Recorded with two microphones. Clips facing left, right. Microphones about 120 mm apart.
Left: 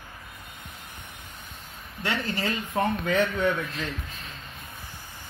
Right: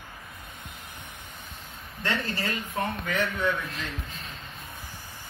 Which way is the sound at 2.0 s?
20° left (ahead or behind).